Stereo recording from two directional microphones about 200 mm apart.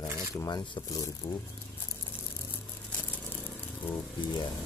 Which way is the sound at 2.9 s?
10° left (ahead or behind).